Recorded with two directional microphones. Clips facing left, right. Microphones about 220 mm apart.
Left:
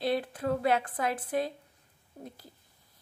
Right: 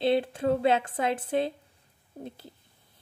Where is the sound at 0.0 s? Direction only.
25° right (ahead or behind).